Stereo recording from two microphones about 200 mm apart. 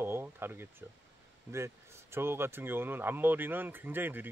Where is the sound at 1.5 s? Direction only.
15° right (ahead or behind).